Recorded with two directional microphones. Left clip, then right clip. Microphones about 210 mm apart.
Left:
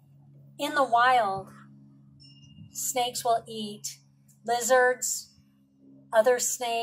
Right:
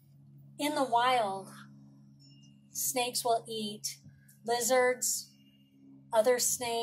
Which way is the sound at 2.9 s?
35° right (ahead or behind).